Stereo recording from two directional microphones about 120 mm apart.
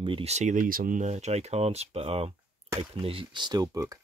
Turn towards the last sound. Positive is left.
turn(degrees=-30)  # may be behind; listen again after turning